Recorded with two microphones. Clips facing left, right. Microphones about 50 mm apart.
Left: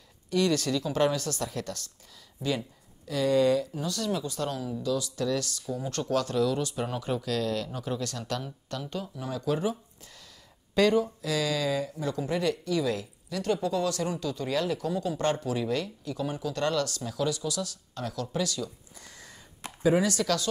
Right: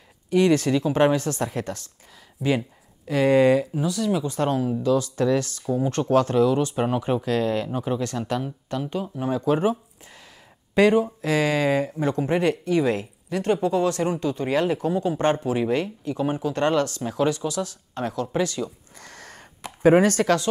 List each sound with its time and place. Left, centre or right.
0.3 s speech: right
3.1 s speech: right
3.8 s speech: centre
4.2 s speech: right
10.7 s speech: right
11.1 s speech: right
18.9 s a sound: right
19.8 s speech: right